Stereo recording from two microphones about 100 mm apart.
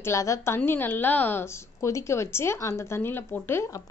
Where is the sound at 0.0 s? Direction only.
30° left (ahead or behind).